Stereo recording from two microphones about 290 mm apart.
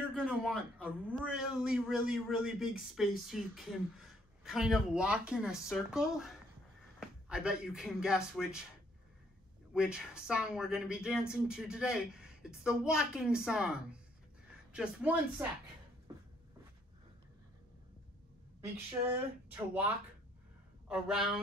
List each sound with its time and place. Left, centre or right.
0.1 s a man's voice: centre
9.8 s speech: centre
19.5 s speech: centre
20.9 s speech: centre